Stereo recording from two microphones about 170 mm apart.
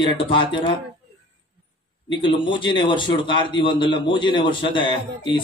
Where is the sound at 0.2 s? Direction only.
30° left (ahead or behind).